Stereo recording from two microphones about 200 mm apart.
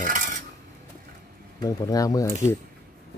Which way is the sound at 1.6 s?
20° left (ahead or behind).